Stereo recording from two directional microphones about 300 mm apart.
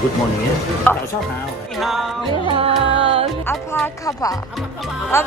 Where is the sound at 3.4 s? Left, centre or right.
Centre.